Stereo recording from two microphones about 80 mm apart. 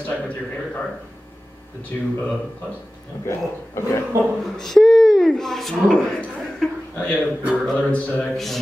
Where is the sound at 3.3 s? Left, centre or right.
Left.